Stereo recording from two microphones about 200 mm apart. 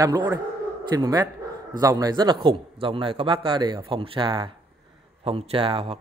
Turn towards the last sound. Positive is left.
turn(degrees=-30)  # may be behind; listen again after turning